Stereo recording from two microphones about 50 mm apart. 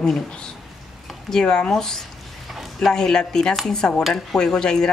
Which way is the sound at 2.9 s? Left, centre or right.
Centre.